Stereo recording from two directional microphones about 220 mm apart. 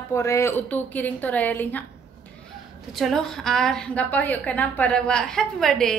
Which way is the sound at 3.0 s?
Centre (ahead or behind).